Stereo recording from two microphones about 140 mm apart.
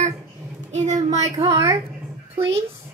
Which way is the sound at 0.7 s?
55° right (ahead or behind).